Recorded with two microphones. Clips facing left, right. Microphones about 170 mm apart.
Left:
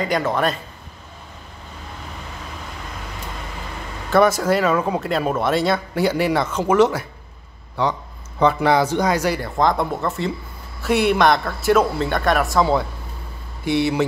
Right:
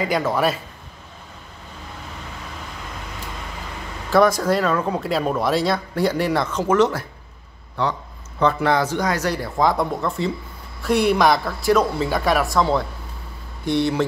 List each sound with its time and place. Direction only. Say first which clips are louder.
0.0 s speech: even; 5° right (ahead or behind)
4.1 s speech: left 1 dB; 5° left (ahead or behind)
5.0 s speech: left 1 dB; centre (ahead or behind)
8.4 s speech: left 2 dB; 15° left (ahead or behind)
9.3 s speech: left 1 dB; 5° right (ahead or behind)
13.7 s speech: left 1 dB; 5° left (ahead or behind)